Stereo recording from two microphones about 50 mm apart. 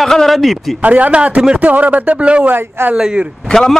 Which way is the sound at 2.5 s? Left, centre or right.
Right.